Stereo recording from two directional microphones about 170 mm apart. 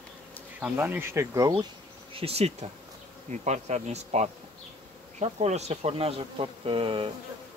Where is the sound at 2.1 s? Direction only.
35° right (ahead or behind).